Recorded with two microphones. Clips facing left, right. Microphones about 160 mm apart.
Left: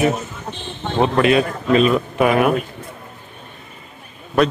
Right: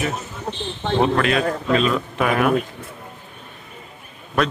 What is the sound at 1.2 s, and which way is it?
A man's voice, 10° left (ahead or behind).